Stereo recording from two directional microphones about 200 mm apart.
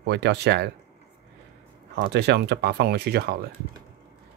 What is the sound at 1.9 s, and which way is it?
Speech, 60° right (ahead or behind).